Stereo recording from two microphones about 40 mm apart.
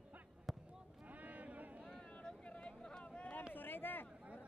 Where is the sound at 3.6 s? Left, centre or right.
Left.